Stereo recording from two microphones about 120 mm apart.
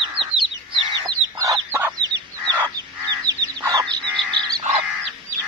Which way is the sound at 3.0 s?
30° right (ahead or behind).